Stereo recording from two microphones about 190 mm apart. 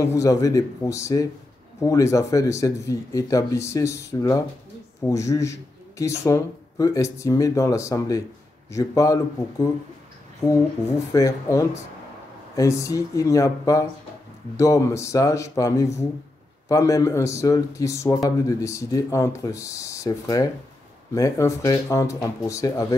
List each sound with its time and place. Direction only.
0.0 s speech: 15° left (ahead or behind)
11.1 s speech: 15° left (ahead or behind)